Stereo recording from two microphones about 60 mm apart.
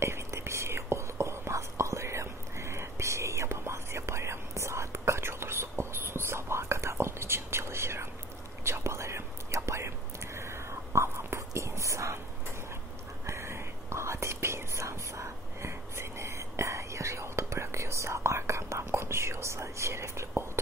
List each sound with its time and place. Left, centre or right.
0.0 s whispering: right
13.3 s whispering: right